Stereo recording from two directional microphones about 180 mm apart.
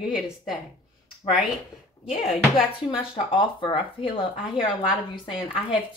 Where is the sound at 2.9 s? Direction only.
30° left (ahead or behind).